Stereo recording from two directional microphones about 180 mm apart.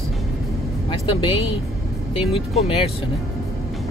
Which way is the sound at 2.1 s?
35° left (ahead or behind).